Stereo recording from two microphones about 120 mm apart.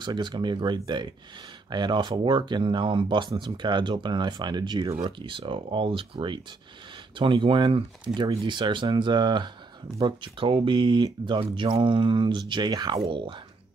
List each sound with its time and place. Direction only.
0.0 s speech: 40° right (ahead or behind)